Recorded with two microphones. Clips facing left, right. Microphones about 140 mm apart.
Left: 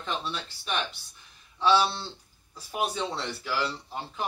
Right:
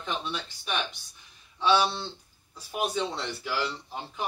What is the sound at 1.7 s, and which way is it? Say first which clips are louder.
Speech: even; 15° right (ahead or behind).